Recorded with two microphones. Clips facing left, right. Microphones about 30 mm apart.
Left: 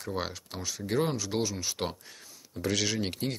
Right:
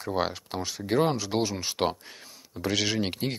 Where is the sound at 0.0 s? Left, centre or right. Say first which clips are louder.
Right 6 dB; centre.